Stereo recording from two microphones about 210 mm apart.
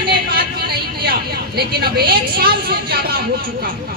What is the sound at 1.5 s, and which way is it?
Speech, 50° right (ahead or behind).